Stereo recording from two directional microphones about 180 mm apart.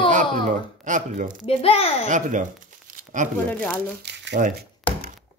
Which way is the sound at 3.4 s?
10° left (ahead or behind).